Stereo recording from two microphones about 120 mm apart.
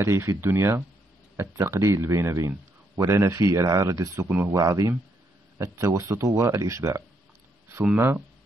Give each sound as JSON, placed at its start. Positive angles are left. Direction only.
{"t": 0.0, "sound": "speech", "side_deg": -25}